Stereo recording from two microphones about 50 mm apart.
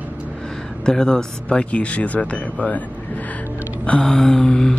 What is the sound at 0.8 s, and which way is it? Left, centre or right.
Speech, centre.